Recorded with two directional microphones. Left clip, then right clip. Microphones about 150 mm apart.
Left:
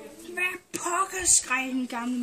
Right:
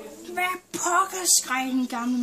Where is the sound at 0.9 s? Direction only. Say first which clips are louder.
Right 3 dB; 30° right (ahead or behind).